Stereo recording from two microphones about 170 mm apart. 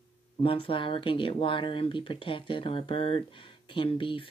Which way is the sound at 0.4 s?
30° left (ahead or behind).